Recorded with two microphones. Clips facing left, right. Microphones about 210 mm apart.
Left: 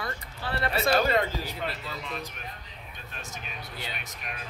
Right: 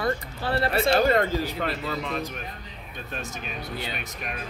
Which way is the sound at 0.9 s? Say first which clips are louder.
Right 4 dB; 50° right (ahead or behind).